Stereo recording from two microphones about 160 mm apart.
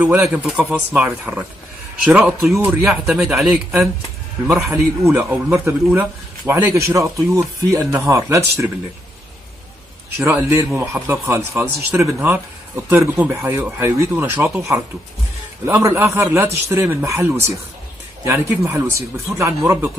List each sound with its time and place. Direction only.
0.0 s speech: 10° right (ahead or behind)
4.6 s speech: 15° right (ahead or behind)
10.1 s speech: 15° right (ahead or behind)